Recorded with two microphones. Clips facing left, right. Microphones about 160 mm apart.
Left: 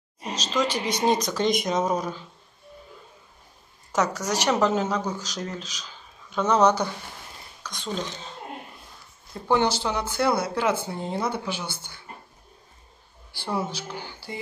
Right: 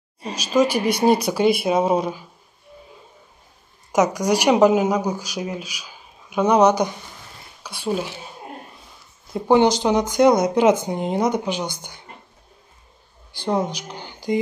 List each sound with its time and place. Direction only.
0.3 s speech: 10° right (ahead or behind)
3.9 s speech: 15° right (ahead or behind)
13.3 s speech: 15° right (ahead or behind)